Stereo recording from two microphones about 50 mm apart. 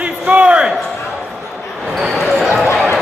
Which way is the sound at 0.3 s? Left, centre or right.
Right.